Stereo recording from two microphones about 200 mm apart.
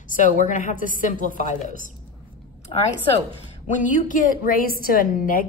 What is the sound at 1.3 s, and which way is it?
Speech, 45° right (ahead or behind).